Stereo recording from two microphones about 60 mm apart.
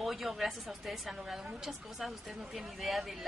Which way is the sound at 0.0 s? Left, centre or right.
Centre.